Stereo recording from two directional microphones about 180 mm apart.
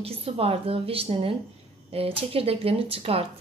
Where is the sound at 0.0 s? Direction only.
35° right (ahead or behind).